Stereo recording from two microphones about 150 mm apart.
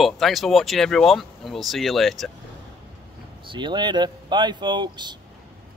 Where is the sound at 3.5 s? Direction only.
30° right (ahead or behind).